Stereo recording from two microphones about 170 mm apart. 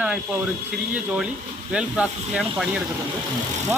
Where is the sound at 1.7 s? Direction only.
5° right (ahead or behind).